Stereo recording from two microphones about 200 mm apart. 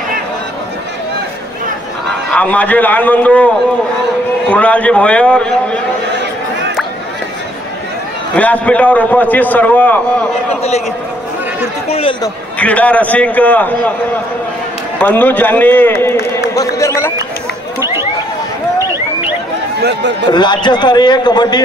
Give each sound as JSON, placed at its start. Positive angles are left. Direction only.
{"t": 2.3, "sound": "a man's voice", "side_deg": 5}
{"t": 4.5, "sound": "a man's voice", "side_deg": 5}
{"t": 8.4, "sound": "a man's voice", "side_deg": 5}
{"t": 11.9, "sound": "a man's voice", "side_deg": 25}
{"t": 12.5, "sound": "a man's voice", "side_deg": 5}
{"t": 15.0, "sound": "a man's voice", "side_deg": 10}
{"t": 19.8, "sound": "speech", "side_deg": -60}
{"t": 20.2, "sound": "a man's voice", "side_deg": 20}